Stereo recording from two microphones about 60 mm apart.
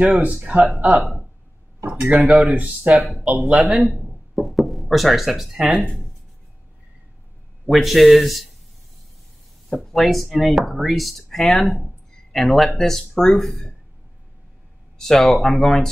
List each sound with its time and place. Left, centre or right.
0.7 s speech: centre
1.9 s a sound: centre
2.1 s speech: centre
2.5 s speech: right
2.9 s speech: centre
7.7 s speech: centre
9.7 s speech: centre
15.0 s speech: centre